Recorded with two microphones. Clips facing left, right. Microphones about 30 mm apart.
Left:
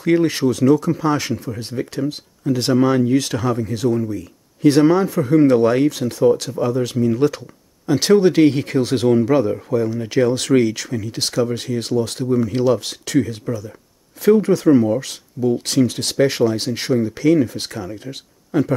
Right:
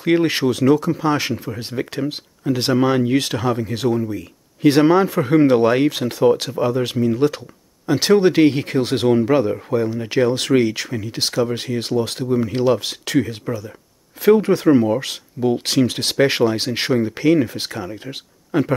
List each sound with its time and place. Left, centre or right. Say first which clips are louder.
0.0 s speech: even; right
5.4 s speech: left 1 dB; right
7.1 s speech: even; centre; by 17.0 s right
17.0 s speech: left 2 dB; right